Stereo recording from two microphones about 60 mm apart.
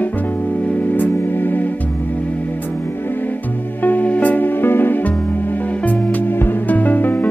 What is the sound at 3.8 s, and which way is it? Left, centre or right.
Music, left.